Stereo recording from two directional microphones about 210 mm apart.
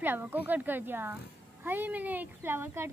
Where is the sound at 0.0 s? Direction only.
10° right (ahead or behind).